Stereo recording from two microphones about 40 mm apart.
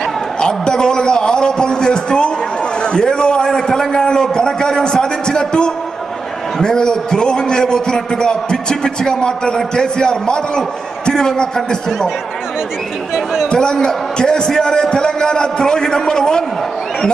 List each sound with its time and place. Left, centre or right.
0.4 s a sound: centre
2.8 s a man's voice: left
13.1 s speech: centre
13.5 s a man's voice: centre